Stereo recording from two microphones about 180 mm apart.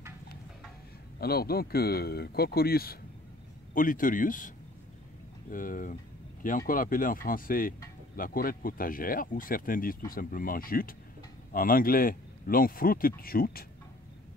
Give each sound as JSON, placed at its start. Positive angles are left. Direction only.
{"t": 1.2, "sound": "speech", "side_deg": 60}
{"t": 5.5, "sound": "speech", "side_deg": 50}